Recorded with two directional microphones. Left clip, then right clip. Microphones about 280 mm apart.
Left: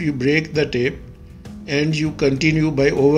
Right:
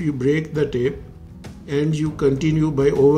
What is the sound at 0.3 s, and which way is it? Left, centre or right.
A man's voice, centre.